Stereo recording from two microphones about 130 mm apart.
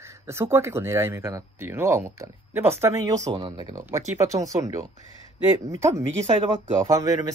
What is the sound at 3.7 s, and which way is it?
Speech, 20° right (ahead or behind).